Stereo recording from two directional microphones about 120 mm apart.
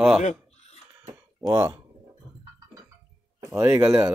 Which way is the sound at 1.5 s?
20° right (ahead or behind).